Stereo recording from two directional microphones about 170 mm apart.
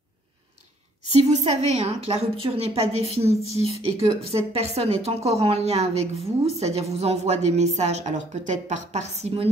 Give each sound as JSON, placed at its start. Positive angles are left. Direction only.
{"t": 1.1, "sound": "a woman's voice", "side_deg": -40}